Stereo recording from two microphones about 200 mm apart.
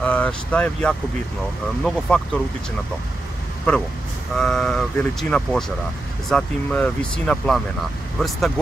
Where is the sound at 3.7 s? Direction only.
5° left (ahead or behind).